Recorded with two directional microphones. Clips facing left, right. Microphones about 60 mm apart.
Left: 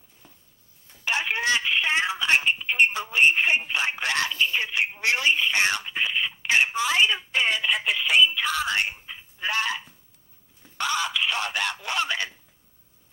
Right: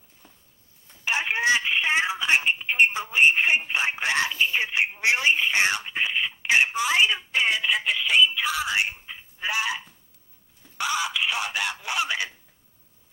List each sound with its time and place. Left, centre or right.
0.2 s a sound: centre
1.0 s telephone: centre
4.9 s speech: centre
5.5 s telephone: centre
7.1 s speech: centre
8.4 s speech: centre
8.8 s a sound: centre
10.8 s speech: centre